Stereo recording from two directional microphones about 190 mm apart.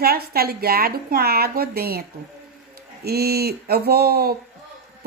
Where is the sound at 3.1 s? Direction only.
55° right (ahead or behind).